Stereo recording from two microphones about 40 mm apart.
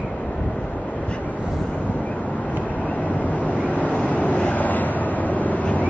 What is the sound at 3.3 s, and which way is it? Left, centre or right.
Vehicle, left.